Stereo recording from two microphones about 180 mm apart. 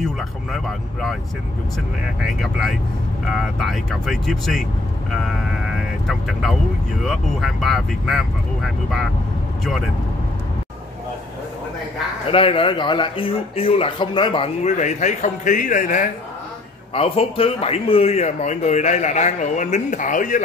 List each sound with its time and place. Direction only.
0.5 s speech: centre (ahead or behind)
2.3 s speech: centre (ahead or behind)
12.3 s speech: 30° left (ahead or behind); by 16.1 s 45° left (ahead or behind)
16.9 s speech: 35° left (ahead or behind)